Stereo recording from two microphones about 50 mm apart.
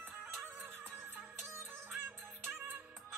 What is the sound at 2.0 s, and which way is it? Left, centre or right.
Music, right.